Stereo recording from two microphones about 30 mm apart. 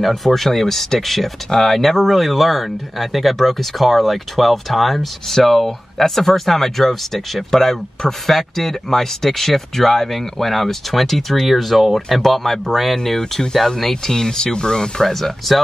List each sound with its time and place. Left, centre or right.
0.0 s speech: centre
14.1 s speech: centre
15.0 s speech: centre